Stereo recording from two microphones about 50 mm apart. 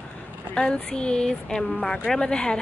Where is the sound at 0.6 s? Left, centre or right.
Centre.